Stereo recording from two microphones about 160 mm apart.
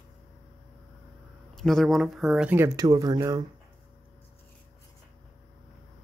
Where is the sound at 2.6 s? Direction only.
20° right (ahead or behind).